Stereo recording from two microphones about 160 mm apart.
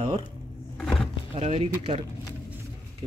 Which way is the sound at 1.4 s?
45° right (ahead or behind).